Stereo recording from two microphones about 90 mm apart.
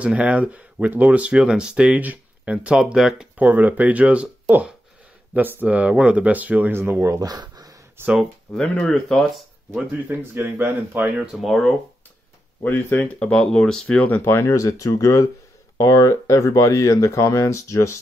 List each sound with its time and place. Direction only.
0.0 s speech: 15° right (ahead or behind)
3.3 s speech: 15° right (ahead or behind); by 7.7 s 45° right (ahead or behind)
8.0 s speech: 25° right (ahead or behind)
8.5 s speech: 5° left (ahead or behind)
9.9 s speech: 20° right (ahead or behind)
11.1 s speech: centre (ahead or behind)
12.6 s speech: 20° left (ahead or behind)